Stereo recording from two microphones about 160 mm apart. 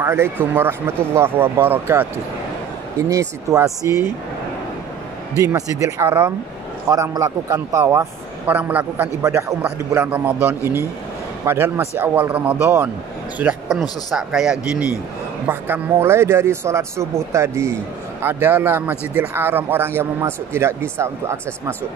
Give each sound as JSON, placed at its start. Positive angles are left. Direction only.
{"t": 0.0, "sound": "a man's voice", "side_deg": -15}
{"t": 5.4, "sound": "a man's voice", "side_deg": -20}